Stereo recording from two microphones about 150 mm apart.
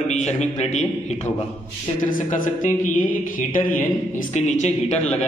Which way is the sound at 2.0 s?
60° left (ahead or behind).